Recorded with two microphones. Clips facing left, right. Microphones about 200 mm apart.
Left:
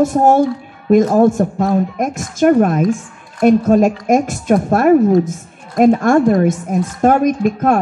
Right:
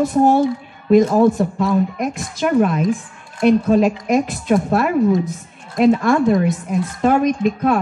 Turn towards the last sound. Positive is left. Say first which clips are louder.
# left 2 dB
turn(degrees=45)  # may be behind; listen again after turning